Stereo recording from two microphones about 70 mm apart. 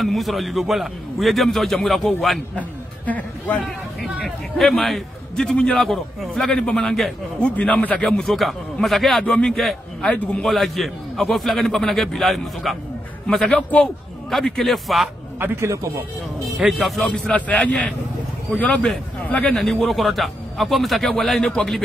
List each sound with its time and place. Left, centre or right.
0.0 s a man's voice: centre
3.1 s speech: left
3.6 s speech: centre
4.6 s a man's voice: centre
7.5 s a man's voice: centre
9.2 s a man's voice: centre
10.4 s a man's voice: centre
15.3 s speech: right
16.7 s a man's voice: centre
17.1 s a man's voice: centre
19.5 s a man's voice: centre